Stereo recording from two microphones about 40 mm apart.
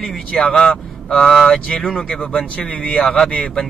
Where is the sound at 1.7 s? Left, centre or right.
Left.